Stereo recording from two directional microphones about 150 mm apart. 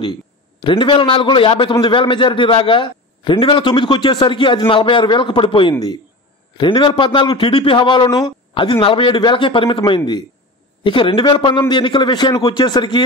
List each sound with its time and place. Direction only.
0.6 s a man's voice: 35° left (ahead or behind)